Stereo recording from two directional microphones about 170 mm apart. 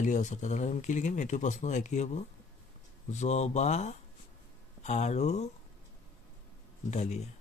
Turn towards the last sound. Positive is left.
turn(degrees=40)  # may be behind; listen again after turning